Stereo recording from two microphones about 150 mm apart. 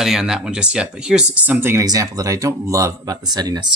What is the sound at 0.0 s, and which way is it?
Speech, 5° right (ahead or behind).